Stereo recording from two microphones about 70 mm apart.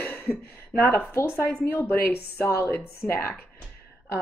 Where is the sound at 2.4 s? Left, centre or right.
Left.